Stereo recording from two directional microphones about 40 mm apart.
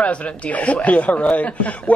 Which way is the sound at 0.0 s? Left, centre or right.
Left.